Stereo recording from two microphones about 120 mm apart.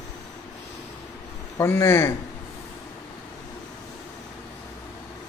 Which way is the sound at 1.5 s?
20° left (ahead or behind).